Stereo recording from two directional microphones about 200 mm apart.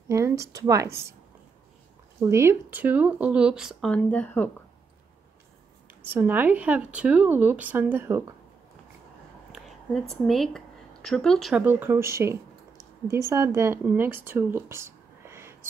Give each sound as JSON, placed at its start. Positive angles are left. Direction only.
{"t": 0.1, "sound": "speech", "side_deg": -15}
{"t": 2.1, "sound": "speech", "side_deg": -15}
{"t": 6.0, "sound": "speech", "side_deg": -10}
{"t": 9.5, "sound": "a woman's voice", "side_deg": 0}